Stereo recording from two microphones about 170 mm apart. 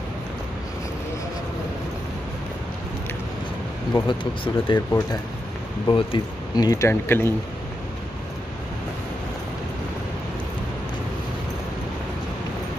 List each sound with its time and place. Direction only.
4.1 s speech: 30° left (ahead or behind)